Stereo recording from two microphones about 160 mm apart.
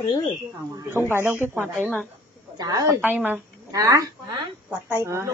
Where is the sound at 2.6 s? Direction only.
25° right (ahead or behind).